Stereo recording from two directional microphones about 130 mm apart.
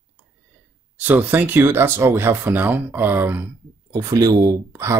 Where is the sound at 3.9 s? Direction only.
25° right (ahead or behind).